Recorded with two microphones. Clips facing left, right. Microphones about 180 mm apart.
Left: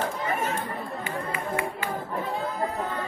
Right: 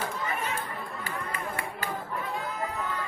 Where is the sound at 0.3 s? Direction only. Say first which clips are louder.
Left 5 dB; 45° left (ahead or behind).